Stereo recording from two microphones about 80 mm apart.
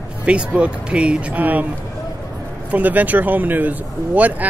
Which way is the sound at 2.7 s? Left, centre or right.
Right.